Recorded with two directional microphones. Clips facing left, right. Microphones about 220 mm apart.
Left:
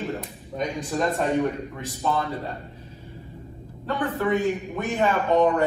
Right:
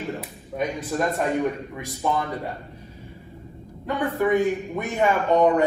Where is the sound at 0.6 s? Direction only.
5° right (ahead or behind).